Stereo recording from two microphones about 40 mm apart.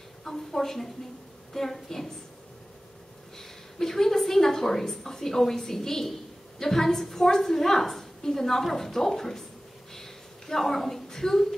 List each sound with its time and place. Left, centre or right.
0.2 s a woman's voice: centre
3.3 s a woman's voice: centre
9.9 s a sound: centre